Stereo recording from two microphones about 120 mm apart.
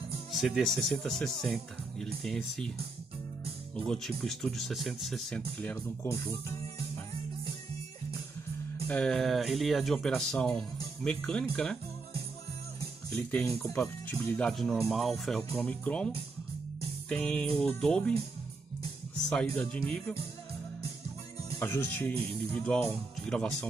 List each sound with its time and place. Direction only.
0.3 s speech: centre (ahead or behind)
3.7 s speech: 5° left (ahead or behind)
6.0 s speech: 25° left (ahead or behind)
8.8 s speech: 10° left (ahead or behind)
13.7 s music: 15° left (ahead or behind)
14.5 s speech: centre (ahead or behind)
15.5 s music: 10° left (ahead or behind)
17.1 s music: 10° left (ahead or behind)
19.4 s music: 15° left (ahead or behind)
21.5 s speech: 20° left (ahead or behind)
22.5 s speech: 5° left (ahead or behind)
22.8 s music: 5° left (ahead or behind)